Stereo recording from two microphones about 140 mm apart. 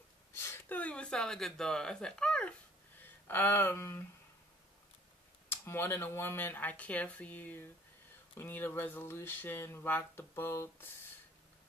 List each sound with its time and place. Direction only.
0.3 s speech: 15° left (ahead or behind)
5.5 s speech: 15° left (ahead or behind)